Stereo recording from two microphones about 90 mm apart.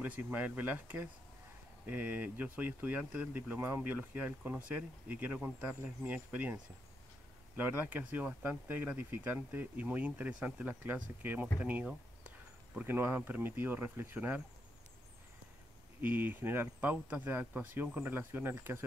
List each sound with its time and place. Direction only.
0.0 s speech: 20° right (ahead or behind)
16.0 s speech: 20° right (ahead or behind)